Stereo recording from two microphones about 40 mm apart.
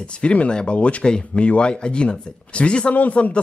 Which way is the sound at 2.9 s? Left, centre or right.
Left.